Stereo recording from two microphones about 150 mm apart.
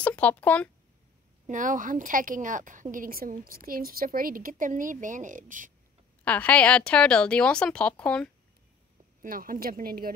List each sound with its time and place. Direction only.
0.0 s a woman's voice: 10° left (ahead or behind)
1.5 s a woman's voice: 60° right (ahead or behind)
6.2 s a woman's voice: 10° left (ahead or behind)
9.2 s a woman's voice: 70° right (ahead or behind)